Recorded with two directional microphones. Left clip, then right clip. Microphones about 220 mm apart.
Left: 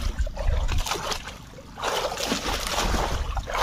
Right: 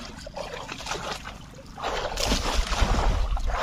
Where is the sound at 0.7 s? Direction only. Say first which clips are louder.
Left 6 dB; 45° left (ahead or behind).